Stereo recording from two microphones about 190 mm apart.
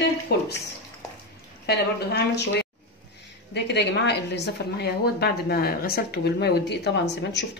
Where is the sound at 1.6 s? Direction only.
60° left (ahead or behind).